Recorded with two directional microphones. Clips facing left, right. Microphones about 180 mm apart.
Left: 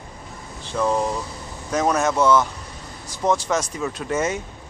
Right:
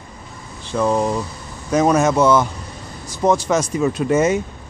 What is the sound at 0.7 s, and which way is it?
Speech, 5° right (ahead or behind).